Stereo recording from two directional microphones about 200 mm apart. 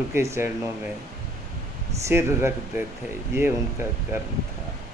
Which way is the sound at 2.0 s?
15° right (ahead or behind).